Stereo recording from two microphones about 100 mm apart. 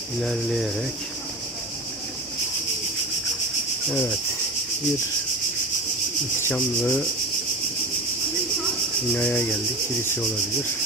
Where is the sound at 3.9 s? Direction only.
15° left (ahead or behind).